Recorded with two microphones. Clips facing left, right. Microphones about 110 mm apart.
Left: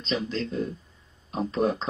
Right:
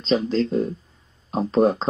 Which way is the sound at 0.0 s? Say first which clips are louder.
Right 8 dB; 35° right (ahead or behind).